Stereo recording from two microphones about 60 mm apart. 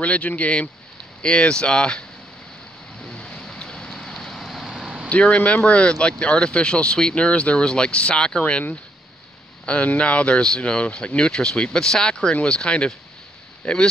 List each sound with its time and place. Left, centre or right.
0.0 s speech: left
3.1 s vehicle: centre
5.1 s speech: left